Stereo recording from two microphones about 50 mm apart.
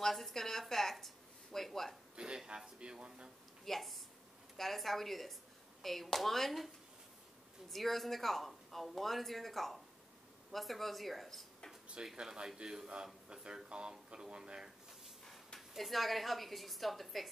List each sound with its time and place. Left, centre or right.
0.0 s a sound: centre
2.1 s a man's voice: centre
3.6 s speech: centre
7.7 s speech: centre
12.2 s a man's voice: centre
15.2 s a sound: centre
15.7 s speech: centre